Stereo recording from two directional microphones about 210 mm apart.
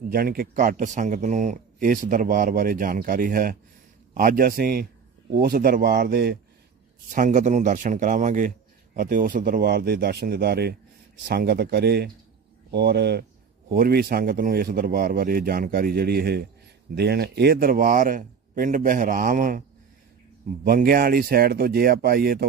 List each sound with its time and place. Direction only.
0.1 s a man's voice: 45° right (ahead or behind)
7.1 s a man's voice: 40° right (ahead or behind)
20.6 s speech: 45° right (ahead or behind)